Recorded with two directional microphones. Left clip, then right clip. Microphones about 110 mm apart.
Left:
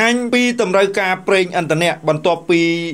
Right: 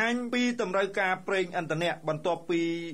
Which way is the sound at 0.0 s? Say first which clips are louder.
Left 13 dB; 25° left (ahead or behind).